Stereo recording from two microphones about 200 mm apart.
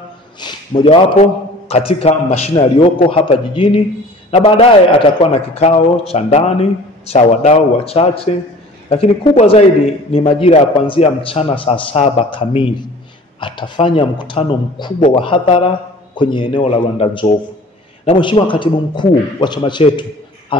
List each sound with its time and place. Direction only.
0.4 s a man's voice: 25° left (ahead or behind)